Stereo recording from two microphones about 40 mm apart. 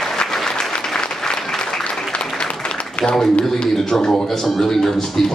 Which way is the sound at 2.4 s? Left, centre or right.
Left.